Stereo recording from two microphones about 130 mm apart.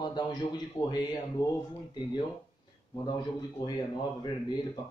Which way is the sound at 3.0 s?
35° left (ahead or behind).